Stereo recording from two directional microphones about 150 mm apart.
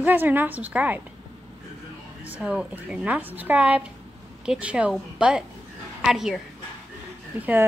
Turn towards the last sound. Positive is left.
turn(degrees=-10)  # may be behind; listen again after turning